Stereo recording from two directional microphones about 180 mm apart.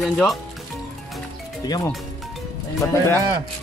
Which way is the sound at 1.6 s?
20° left (ahead or behind).